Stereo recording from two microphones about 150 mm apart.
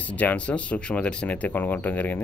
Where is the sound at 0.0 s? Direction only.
10° left (ahead or behind).